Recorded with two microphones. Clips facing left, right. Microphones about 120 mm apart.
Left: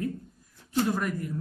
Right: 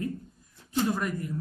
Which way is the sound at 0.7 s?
Centre (ahead or behind).